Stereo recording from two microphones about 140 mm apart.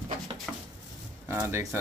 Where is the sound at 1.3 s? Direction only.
15° right (ahead or behind).